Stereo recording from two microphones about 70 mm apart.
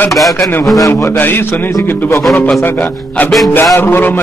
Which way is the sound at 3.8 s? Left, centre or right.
Left.